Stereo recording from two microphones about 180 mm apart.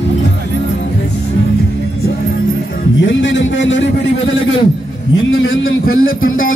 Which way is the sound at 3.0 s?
90° left.